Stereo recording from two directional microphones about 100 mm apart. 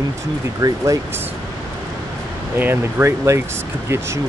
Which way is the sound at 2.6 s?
20° right (ahead or behind).